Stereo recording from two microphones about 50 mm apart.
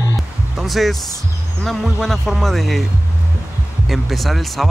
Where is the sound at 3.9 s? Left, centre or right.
Centre.